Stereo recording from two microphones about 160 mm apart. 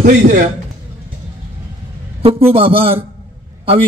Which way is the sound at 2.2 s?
35° right (ahead or behind).